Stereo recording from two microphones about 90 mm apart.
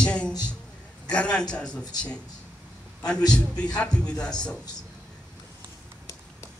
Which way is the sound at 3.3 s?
10° left (ahead or behind).